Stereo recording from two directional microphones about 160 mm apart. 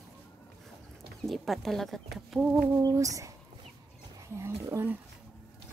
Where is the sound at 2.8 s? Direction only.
20° right (ahead or behind).